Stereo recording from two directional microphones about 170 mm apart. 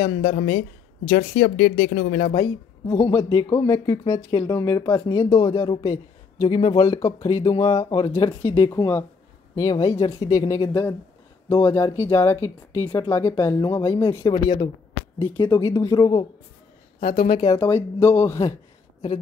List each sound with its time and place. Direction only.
0.0 s speech: 40° left (ahead or behind)
1.1 s speech: 55° left (ahead or behind)
2.3 s speech: 30° left (ahead or behind)
7.0 s speech: 15° left (ahead or behind)
7.2 s speech: 30° left (ahead or behind)
10.0 s speech: 35° left (ahead or behind)
10.5 s speech: 15° left (ahead or behind)
17.0 s speech: 60° left (ahead or behind)
17.4 s speech: 20° left (ahead or behind)